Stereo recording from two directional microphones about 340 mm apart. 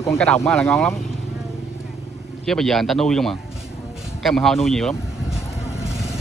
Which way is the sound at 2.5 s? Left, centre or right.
Centre.